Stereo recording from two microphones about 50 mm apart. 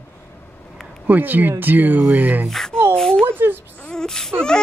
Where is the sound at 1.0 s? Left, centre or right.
Right.